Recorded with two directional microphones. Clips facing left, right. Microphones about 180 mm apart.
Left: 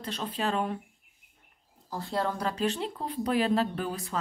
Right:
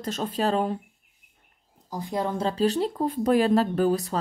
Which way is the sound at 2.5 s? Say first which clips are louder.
Right 6 dB; 35° right (ahead or behind).